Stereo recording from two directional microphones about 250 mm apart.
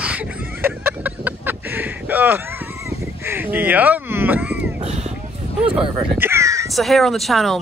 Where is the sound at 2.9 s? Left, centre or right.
Centre.